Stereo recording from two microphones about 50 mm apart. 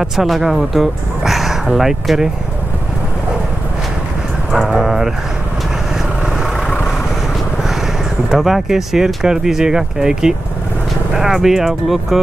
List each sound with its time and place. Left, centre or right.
0.0 s speech: centre
4.5 s dog: centre
6.2 s vehicle: centre
7.6 s speech: centre